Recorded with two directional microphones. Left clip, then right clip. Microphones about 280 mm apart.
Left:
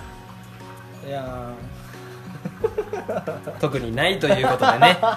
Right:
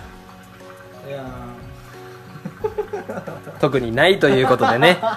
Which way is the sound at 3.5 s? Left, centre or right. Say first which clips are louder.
Right 7 dB; centre.